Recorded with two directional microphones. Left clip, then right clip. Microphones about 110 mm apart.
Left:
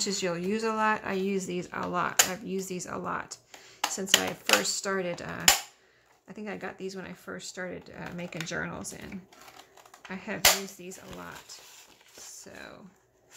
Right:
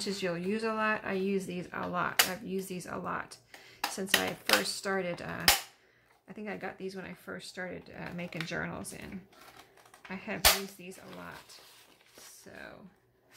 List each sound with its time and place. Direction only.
0.0 s speech: 30° left (ahead or behind)